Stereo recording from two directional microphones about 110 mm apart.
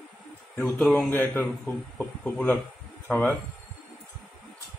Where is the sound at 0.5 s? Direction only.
5° left (ahead or behind).